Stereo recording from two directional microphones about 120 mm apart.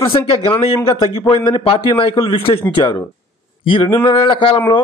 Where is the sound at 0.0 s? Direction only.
45° left (ahead or behind).